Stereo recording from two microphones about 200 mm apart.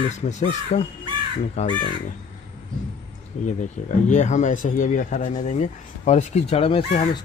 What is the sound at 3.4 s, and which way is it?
Speech, 40° left (ahead or behind).